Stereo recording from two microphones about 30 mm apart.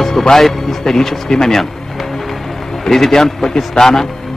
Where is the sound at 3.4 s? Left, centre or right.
Left.